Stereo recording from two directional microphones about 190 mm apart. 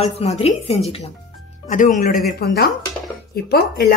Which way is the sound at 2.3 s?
55° left (ahead or behind).